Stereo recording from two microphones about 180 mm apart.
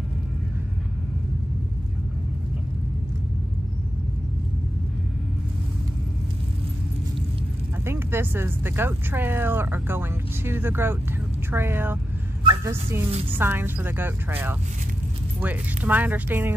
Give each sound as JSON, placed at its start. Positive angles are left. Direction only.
{"t": 7.8, "sound": "speech", "side_deg": -15}